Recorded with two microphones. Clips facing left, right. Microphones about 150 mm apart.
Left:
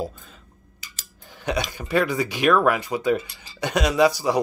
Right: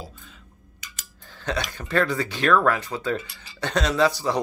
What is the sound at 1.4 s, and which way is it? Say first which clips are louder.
Speech: left 2 dB; 15° left (ahead or behind).